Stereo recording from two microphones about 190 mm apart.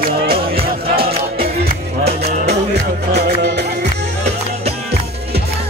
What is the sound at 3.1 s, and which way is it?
Music, 60° right (ahead or behind).